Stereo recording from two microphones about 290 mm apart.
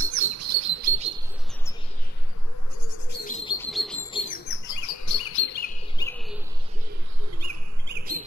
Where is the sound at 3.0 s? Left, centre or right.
Left.